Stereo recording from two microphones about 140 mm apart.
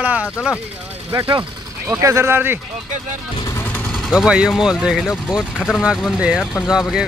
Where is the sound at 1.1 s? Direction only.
30° right (ahead or behind).